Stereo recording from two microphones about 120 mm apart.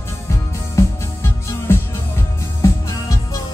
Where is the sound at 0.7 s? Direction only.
20° left (ahead or behind).